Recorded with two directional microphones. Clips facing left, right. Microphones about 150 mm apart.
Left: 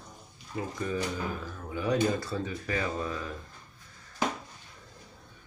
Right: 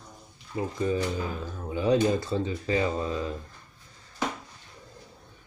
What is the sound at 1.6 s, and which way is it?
Speech, 25° right (ahead or behind).